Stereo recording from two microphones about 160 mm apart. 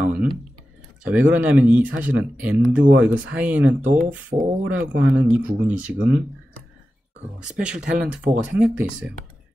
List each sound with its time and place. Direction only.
0.0 s a sound: 5° right (ahead or behind)
1.0 s speech: 10° right (ahead or behind)
3.8 s speech: 55° right (ahead or behind)
4.1 s speech: 10° right (ahead or behind)
7.4 s speech: 5° right (ahead or behind)